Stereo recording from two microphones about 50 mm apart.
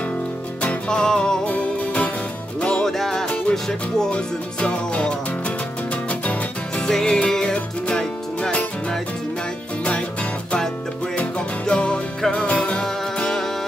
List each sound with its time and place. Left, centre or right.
0.8 s music: centre
1.5 s music: left
3.0 s music: centre
6.9 s music: centre
11.1 s music: left